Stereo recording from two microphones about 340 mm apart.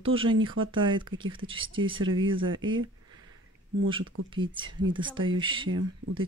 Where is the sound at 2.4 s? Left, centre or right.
Right.